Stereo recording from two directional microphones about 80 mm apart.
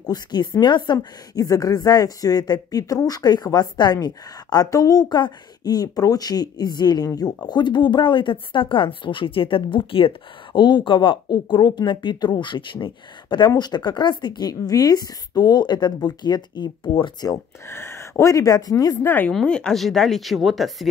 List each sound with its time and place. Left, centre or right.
0.0 s speech: left
0.9 s a woman's voice: left
10.5 s speech: left
13.6 s speech: left
14.5 s a woman's voice: left
17.6 s speech: left
19.0 s speech: left
19.3 s speech: centre